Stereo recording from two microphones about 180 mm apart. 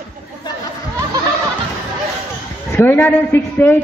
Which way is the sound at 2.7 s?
10° left (ahead or behind).